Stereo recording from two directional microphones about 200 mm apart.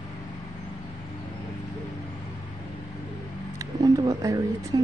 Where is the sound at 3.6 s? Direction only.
15° right (ahead or behind).